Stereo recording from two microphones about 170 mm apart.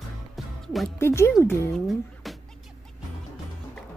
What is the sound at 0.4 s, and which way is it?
Music, centre (ahead or behind).